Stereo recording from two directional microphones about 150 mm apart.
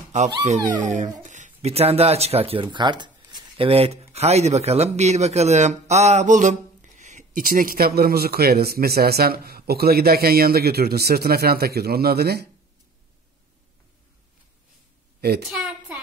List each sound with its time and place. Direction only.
0.1 s a man's voice: 50° right (ahead or behind); by 12.4 s 90° right
15.1 s a woman's voice: 90° right
15.5 s a sound: 5° right (ahead or behind)